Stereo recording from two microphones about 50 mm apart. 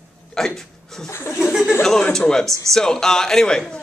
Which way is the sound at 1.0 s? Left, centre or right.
Left.